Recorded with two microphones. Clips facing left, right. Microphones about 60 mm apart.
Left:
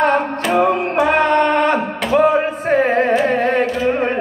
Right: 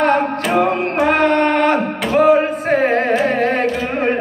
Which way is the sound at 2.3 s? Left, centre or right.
Centre.